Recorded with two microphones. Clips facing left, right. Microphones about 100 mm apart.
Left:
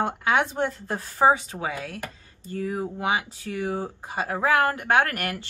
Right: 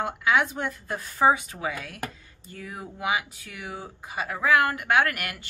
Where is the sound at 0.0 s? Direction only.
35° left (ahead or behind).